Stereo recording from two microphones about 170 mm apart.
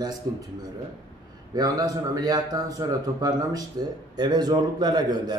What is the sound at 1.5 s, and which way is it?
A man's voice, 20° right (ahead or behind).